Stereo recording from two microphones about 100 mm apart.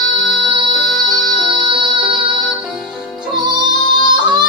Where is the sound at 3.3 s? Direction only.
50° right (ahead or behind).